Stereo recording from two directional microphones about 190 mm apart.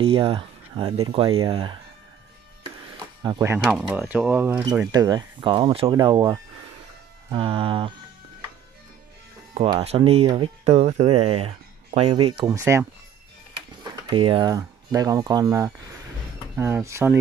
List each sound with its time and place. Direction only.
0.0 s speech: 30° right (ahead or behind)
3.2 s speech: 20° right (ahead or behind)
3.6 s speech: centre (ahead or behind)
4.9 s speech: 20° right (ahead or behind)
9.5 s speech: 30° right (ahead or behind)
12.4 s speech: 15° right (ahead or behind)
14.1 s speech: 25° right (ahead or behind)